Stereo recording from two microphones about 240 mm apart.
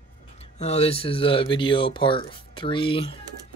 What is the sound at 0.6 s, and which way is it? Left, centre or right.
Speech, left.